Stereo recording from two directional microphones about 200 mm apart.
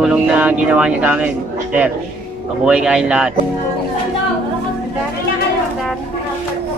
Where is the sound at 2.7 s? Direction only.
5° right (ahead or behind).